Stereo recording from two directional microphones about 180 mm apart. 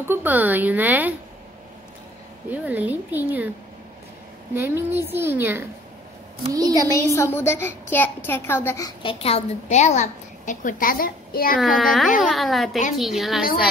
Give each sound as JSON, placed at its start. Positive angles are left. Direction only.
{"t": 0.1, "sound": "a woman's voice", "side_deg": -10}
{"t": 2.5, "sound": "a woman's voice", "side_deg": -10}
{"t": 4.6, "sound": "a woman's voice", "side_deg": -10}
{"t": 6.8, "sound": "a child's voice", "side_deg": 15}
{"t": 9.2, "sound": "a woman's voice", "side_deg": 35}
{"t": 11.8, "sound": "a woman's voice", "side_deg": 0}